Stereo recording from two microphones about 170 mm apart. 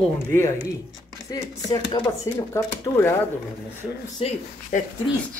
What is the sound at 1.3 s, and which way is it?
Speech, 25° left (ahead or behind).